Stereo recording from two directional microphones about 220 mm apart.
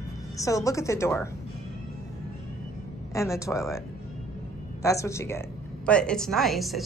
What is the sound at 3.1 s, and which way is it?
A woman's voice, 15° left (ahead or behind).